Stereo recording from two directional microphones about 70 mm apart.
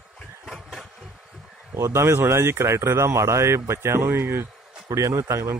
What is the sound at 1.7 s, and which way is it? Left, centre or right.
Speech, right.